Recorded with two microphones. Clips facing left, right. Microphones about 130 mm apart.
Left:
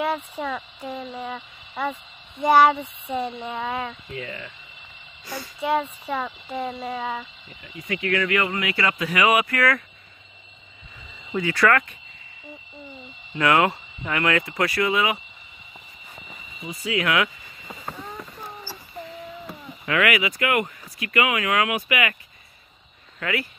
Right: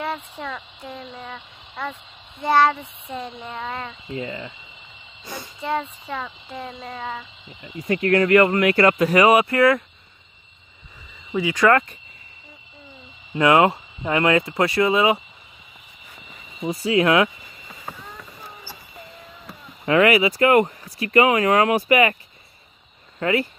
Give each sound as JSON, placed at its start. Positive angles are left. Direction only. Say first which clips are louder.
{"t": 0.0, "sound": "speech", "louder": "left 3 dB", "side_deg": 5}
{"t": 4.1, "sound": "speech", "louder": "right 4 dB", "side_deg": -20}
{"t": 5.6, "sound": "speech", "louder": "left 2 dB", "side_deg": 5}
{"t": 7.8, "sound": "speech", "louder": "right 6 dB", "side_deg": -40}
{"t": 11.3, "sound": "speech", "louder": "right 3 dB", "side_deg": -15}
{"t": 13.4, "sound": "speech", "louder": "right 4 dB", "side_deg": -25}
{"t": 16.5, "sound": "speech", "louder": "right 7 dB", "side_deg": -35}
{"t": 19.8, "sound": "speech", "louder": "right 6 dB", "side_deg": -35}
{"t": 23.1, "sound": "speech", "louder": "right 6 dB", "side_deg": -30}